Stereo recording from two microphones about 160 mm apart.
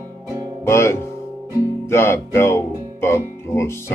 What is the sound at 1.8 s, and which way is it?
Speech, 15° left (ahead or behind).